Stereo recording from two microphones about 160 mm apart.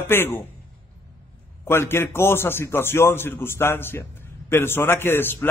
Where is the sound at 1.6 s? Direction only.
15° left (ahead or behind).